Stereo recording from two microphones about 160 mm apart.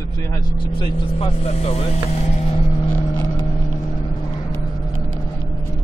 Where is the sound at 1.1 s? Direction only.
40° left (ahead or behind).